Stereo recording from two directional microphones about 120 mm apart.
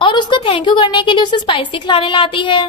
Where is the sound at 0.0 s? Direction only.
40° left (ahead or behind).